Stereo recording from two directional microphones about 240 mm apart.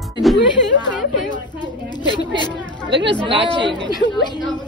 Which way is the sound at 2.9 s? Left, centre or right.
Right.